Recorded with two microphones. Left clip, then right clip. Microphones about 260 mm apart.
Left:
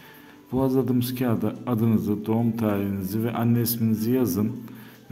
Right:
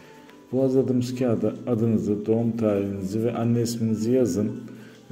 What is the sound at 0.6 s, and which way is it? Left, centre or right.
A man's voice, centre.